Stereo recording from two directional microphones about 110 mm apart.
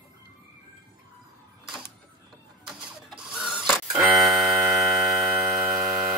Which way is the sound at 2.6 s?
5° right (ahead or behind).